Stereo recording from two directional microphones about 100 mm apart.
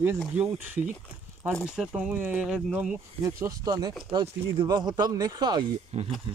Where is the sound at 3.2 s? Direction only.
30° right (ahead or behind).